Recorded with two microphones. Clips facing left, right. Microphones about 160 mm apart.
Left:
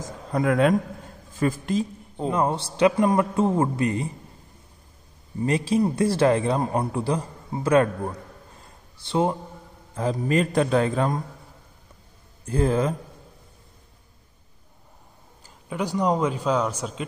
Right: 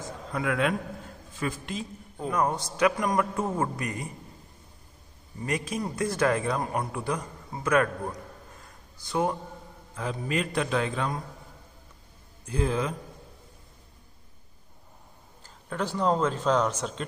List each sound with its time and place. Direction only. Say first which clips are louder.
0.3 s a man's voice: left 7 dB; 40° left (ahead or behind)
2.1 s a man's voice: left 4 dB; 25° left (ahead or behind)
5.4 s a man's voice: left 9 dB; 30° left (ahead or behind)
8.9 s a man's voice: left 4 dB; 25° left (ahead or behind)
9.9 s a man's voice: left 7 dB; 40° left (ahead or behind)
12.4 s speech: left 6 dB; 45° left (ahead or behind)
15.4 s speech: left 3 dB; 15° left (ahead or behind)